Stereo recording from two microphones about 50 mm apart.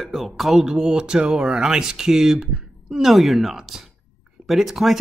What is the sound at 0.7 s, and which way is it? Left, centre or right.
Speech, centre.